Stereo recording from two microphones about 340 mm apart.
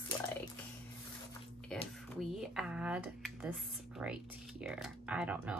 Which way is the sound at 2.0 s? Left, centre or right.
Centre.